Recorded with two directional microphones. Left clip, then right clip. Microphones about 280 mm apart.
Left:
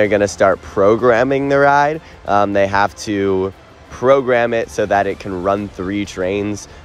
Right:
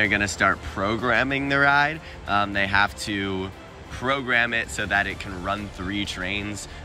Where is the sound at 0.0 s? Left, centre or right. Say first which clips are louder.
Left 8 dB; left.